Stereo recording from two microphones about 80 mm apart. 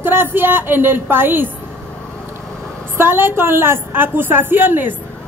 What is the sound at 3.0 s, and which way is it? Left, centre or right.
A man's voice, right.